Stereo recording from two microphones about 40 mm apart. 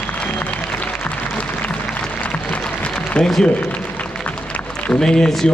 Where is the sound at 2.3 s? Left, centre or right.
Left.